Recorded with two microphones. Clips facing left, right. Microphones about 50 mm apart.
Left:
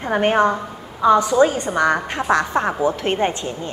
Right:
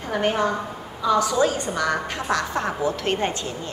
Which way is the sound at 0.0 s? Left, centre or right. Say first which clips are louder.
Left 6 dB; left.